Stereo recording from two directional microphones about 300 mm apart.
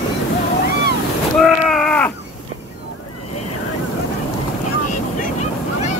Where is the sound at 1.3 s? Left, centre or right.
Centre.